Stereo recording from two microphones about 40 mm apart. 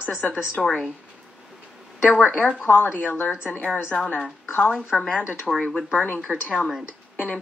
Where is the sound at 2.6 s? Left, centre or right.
Left.